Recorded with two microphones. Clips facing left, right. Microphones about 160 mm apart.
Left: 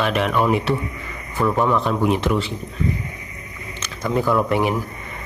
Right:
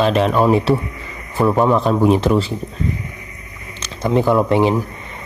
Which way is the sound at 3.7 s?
30° right (ahead or behind).